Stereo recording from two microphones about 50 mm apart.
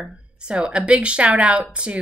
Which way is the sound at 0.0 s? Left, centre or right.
Right.